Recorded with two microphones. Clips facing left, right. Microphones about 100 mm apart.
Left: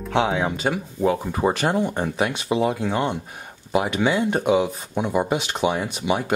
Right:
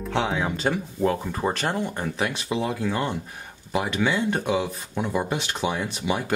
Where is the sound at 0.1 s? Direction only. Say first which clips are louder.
Left 4 dB; 15° left (ahead or behind).